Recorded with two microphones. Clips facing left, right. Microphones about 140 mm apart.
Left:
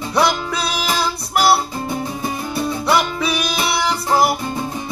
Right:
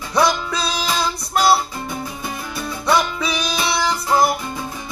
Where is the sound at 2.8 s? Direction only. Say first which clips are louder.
Right 1 dB; 5° left (ahead or behind).